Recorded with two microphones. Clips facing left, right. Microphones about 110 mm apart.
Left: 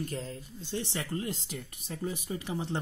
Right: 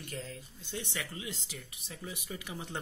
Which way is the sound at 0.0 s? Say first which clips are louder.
Left 6 dB; 35° left (ahead or behind).